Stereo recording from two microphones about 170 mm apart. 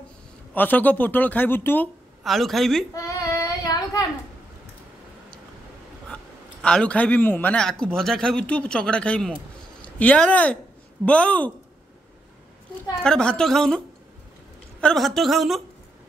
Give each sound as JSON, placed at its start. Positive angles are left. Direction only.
{"t": 0.6, "sound": "a man's voice", "side_deg": 10}
{"t": 2.2, "sound": "a woman's voice", "side_deg": 0}
{"t": 2.9, "sound": "child singing", "side_deg": 20}
{"t": 6.6, "sound": "a man's voice", "side_deg": 5}
{"t": 13.0, "sound": "a woman's voice", "side_deg": 5}